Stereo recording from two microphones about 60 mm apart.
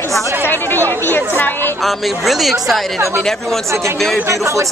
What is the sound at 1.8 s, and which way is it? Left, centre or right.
Speech, centre.